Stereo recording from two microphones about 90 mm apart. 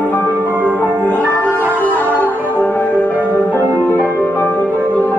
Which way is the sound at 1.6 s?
20° right (ahead or behind).